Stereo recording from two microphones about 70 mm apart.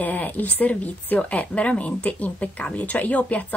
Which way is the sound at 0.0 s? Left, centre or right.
Left.